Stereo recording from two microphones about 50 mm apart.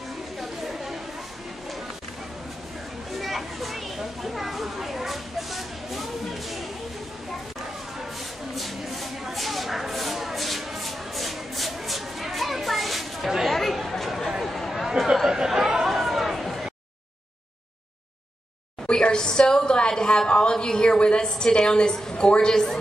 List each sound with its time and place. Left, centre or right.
0.4 s chatter: centre
3.1 s children playing: centre
8.5 s a sound: centre
13.7 s chatter: centre
14.4 s a sound: centre
15.2 s chatter: centre
18.9 s a woman's voice: centre